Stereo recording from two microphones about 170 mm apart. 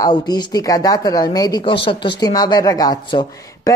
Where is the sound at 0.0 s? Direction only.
25° left (ahead or behind).